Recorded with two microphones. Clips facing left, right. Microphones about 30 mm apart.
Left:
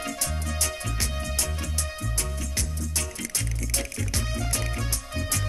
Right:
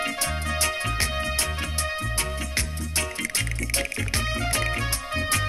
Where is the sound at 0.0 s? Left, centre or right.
Right.